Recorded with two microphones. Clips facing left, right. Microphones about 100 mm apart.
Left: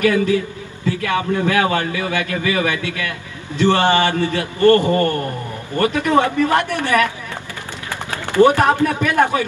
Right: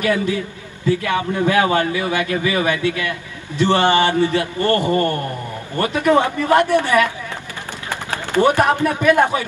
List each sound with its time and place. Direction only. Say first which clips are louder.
0.0 s a man's voice: left 3 dB; 20° right (ahead or behind)
8.4 s speech: left 2 dB; 15° right (ahead or behind)